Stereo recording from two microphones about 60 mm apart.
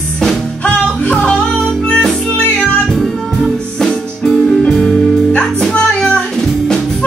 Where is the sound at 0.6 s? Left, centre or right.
Left.